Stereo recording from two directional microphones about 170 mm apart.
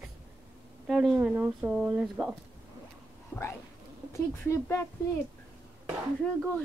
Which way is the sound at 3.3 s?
10° left (ahead or behind).